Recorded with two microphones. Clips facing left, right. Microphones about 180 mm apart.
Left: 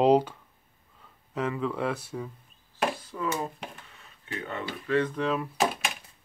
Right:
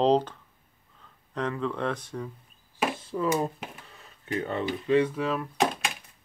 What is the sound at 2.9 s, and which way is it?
Hands, 30° right (ahead or behind).